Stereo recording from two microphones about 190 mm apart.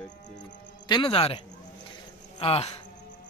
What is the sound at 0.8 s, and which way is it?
A man's voice, 25° left (ahead or behind).